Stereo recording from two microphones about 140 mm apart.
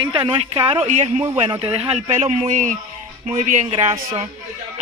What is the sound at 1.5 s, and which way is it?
A man's voice, 40° right (ahead or behind).